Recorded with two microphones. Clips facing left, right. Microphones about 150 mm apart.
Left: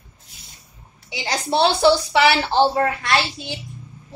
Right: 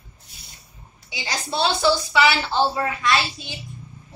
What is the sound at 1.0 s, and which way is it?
A woman's voice, 65° left (ahead or behind).